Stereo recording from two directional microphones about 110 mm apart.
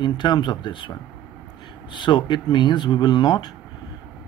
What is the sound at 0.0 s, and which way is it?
Speech, 45° left (ahead or behind).